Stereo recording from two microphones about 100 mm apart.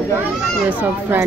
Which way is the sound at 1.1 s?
20° right (ahead or behind).